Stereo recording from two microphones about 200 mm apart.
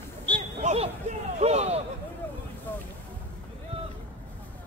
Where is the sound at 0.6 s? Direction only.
35° right (ahead or behind).